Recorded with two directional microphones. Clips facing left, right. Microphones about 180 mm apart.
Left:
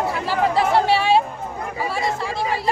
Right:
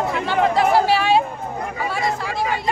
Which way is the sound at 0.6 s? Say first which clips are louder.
Even; 30° left (ahead or behind).